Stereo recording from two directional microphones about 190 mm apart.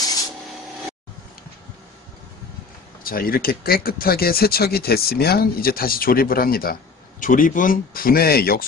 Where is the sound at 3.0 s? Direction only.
50° left (ahead or behind).